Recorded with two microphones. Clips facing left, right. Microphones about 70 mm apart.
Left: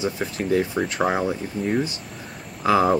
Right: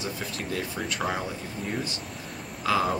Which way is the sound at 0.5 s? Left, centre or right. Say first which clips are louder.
Left 11 dB; left.